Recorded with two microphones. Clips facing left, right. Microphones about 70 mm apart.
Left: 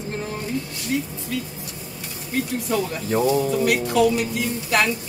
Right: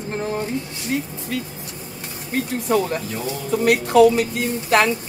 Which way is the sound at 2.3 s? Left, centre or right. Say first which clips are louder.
Right 3 dB; right.